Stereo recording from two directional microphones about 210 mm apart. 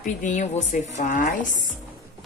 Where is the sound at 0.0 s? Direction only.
35° left (ahead or behind).